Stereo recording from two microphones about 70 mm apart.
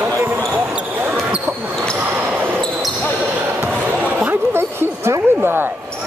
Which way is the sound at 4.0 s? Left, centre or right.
Right.